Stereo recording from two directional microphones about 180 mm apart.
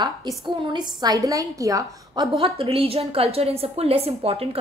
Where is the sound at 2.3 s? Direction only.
30° right (ahead or behind).